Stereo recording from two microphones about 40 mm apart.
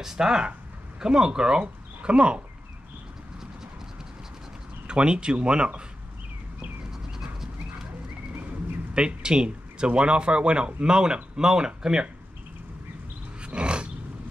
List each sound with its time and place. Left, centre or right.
0.0 s speech: centre
1.6 s speech: right
4.8 s speech: right
8.9 s speech: right
13.4 s roar: right